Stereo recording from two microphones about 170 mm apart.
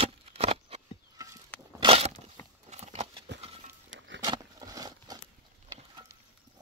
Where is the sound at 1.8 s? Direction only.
35° right (ahead or behind).